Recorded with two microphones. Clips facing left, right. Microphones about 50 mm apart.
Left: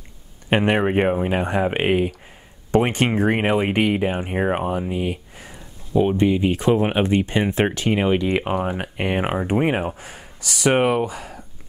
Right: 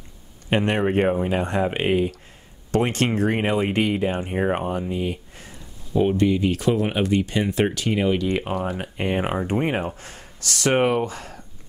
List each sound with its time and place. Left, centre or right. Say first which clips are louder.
0.5 s speech: left 2 dB; left